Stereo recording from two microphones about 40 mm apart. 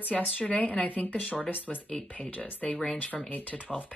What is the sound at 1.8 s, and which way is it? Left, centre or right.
Speech, left.